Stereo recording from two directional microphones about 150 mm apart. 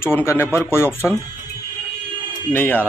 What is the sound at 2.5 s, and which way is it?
Speech, 15° left (ahead or behind).